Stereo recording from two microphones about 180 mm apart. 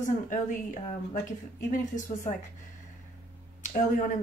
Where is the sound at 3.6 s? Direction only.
45° left (ahead or behind).